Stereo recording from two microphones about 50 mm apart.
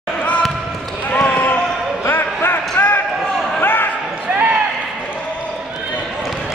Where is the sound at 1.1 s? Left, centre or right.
Left.